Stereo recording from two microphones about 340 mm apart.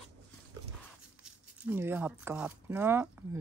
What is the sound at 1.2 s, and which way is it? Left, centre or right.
Speech, centre.